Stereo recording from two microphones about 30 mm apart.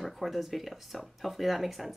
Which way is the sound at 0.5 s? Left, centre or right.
Centre.